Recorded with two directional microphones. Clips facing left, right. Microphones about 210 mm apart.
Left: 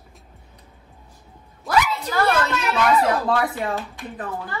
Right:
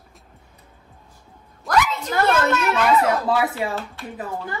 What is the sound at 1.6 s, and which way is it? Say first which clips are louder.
Speech: even; 5° left (ahead or behind).